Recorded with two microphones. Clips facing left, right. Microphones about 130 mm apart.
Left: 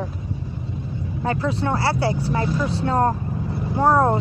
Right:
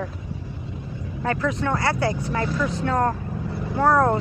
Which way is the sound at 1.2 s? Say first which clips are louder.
Left 1 dB; 25° left (ahead or behind).